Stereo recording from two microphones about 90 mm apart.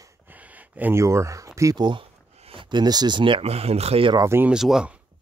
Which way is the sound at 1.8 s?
65° right (ahead or behind).